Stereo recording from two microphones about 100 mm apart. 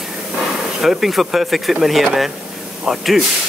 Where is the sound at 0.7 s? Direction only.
Centre (ahead or behind).